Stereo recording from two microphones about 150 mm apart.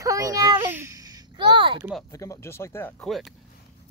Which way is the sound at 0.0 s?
20° right (ahead or behind).